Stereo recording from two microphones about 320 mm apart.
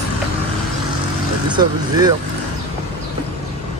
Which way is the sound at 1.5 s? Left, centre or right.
Centre.